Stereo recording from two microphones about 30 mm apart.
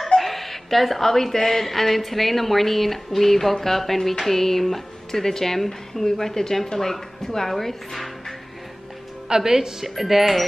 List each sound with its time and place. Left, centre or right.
0.2 s a woman's voice: centre
9.3 s a woman's voice: centre
9.8 s speech: centre